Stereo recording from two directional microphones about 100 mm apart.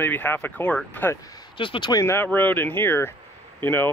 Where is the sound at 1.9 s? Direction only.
35° left (ahead or behind).